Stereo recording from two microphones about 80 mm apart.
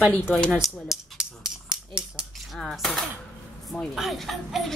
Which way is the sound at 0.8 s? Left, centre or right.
Centre.